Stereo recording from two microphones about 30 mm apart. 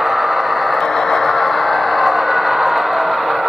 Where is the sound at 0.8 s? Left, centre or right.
Centre.